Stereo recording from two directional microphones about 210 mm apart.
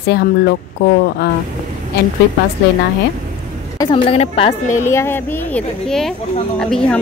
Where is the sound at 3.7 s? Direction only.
25° left (ahead or behind).